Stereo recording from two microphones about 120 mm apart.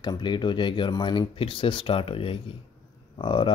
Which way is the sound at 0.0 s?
40° left (ahead or behind).